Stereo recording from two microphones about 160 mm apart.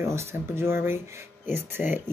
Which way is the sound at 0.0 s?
15° right (ahead or behind).